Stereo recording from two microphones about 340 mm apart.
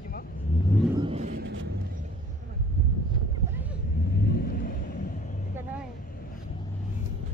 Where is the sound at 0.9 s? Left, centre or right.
Centre; by 1.7 s right.